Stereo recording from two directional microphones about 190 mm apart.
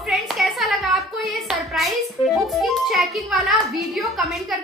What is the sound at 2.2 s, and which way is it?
Music, 30° left (ahead or behind).